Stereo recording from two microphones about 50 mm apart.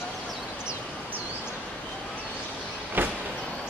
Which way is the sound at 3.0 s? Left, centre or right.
Right.